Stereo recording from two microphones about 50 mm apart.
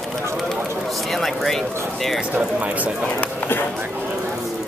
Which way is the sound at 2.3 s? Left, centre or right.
Right.